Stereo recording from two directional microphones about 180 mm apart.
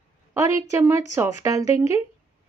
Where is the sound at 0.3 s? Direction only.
15° right (ahead or behind).